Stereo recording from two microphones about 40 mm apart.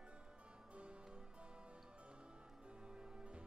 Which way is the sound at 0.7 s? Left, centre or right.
Right.